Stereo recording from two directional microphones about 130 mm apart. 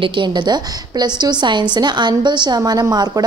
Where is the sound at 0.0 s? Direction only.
40° right (ahead or behind).